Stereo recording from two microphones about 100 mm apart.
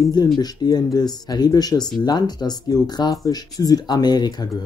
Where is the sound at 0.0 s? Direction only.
40° left (ahead or behind).